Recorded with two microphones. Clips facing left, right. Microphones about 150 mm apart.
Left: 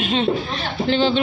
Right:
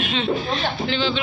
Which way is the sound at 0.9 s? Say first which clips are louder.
Left 8 dB; 50° left (ahead or behind).